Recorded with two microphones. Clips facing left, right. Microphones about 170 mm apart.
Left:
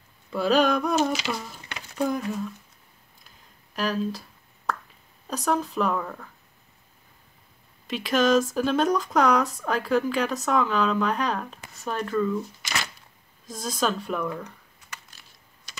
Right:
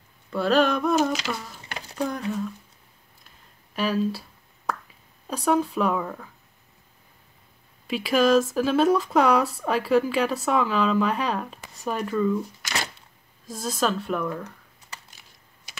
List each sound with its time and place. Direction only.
0.3 s speech: centre (ahead or behind)
1.7 s a sound: 35° right (ahead or behind)
2.0 s speech: 5° left (ahead or behind)
3.3 s a sound: centre (ahead or behind)
4.7 s plop: 10° right (ahead or behind)
5.3 s speech: 10° right (ahead or behind)
7.9 s speech: 5° right (ahead or behind)
13.5 s speech: 5° right (ahead or behind)